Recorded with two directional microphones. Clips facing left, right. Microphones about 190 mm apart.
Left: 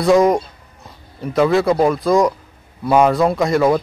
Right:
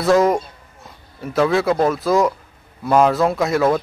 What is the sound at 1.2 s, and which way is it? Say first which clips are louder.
Speech: left 2 dB; centre (ahead or behind).